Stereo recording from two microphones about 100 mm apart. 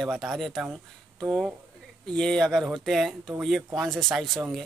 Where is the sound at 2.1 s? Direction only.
5° left (ahead or behind).